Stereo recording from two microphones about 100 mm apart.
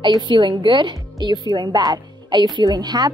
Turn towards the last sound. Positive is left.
turn(degrees=-45)  # may be behind; listen again after turning